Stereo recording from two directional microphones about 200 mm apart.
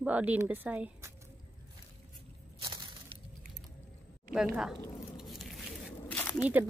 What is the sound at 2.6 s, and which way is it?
Crushing, 20° right (ahead or behind).